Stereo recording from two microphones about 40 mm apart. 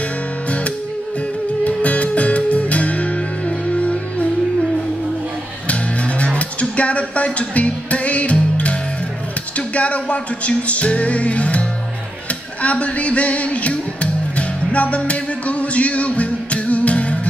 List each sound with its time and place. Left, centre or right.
1.6 s music: left
5.7 s music: left
12.6 s speech: left
14.3 s music: left